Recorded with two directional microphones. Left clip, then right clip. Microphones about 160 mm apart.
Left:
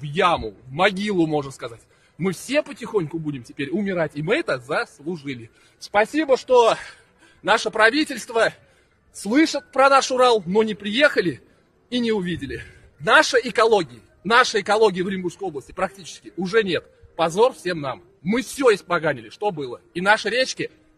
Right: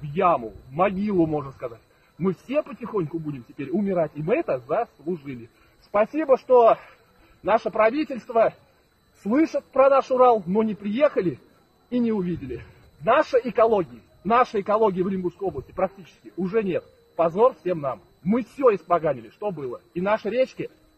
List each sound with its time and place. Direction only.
0.1 s a man's voice: 40° left (ahead or behind)